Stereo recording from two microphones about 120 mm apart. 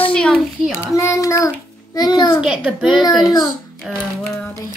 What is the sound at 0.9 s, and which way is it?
A child's voice, 25° left (ahead or behind).